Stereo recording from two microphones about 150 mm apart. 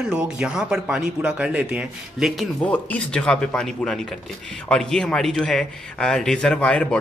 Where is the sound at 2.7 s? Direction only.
10° left (ahead or behind).